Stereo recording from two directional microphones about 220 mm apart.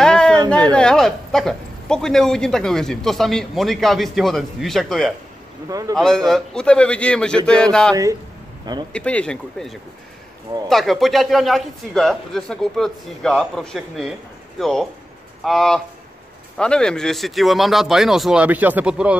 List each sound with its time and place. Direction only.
0.0 s a sound: 5° left (ahead or behind)
0.7 s a man's voice: 5° left (ahead or behind)
5.7 s speech: 15° right (ahead or behind)
5.9 s a man's voice: centre (ahead or behind)
7.9 s speech: 15° right (ahead or behind)
8.9 s a man's voice: 5° left (ahead or behind)